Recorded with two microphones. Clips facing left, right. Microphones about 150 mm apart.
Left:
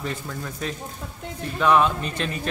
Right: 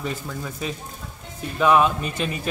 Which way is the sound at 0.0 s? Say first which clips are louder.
Right 1 dB; 5° right (ahead or behind).